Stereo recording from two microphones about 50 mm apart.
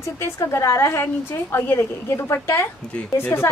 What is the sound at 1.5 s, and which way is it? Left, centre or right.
Speech, left.